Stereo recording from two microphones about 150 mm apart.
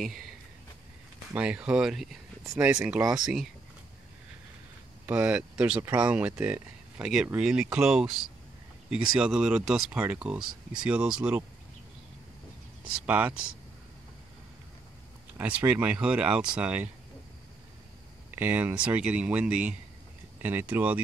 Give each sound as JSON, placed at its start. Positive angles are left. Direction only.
{"t": 1.3, "sound": "speech", "side_deg": -5}
{"t": 2.4, "sound": "speech", "side_deg": -20}
{"t": 2.7, "sound": "speech", "side_deg": -10}
{"t": 5.0, "sound": "speech", "side_deg": -10}
{"t": 13.0, "sound": "speech", "side_deg": -10}
{"t": 15.3, "sound": "speech", "side_deg": -10}
{"t": 18.3, "sound": "speech", "side_deg": -10}